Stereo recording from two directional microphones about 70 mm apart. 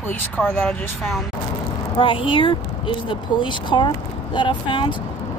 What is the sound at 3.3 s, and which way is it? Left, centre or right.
Speech, left.